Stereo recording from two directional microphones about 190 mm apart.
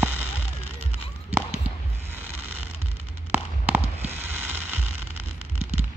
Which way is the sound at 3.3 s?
10° right (ahead or behind).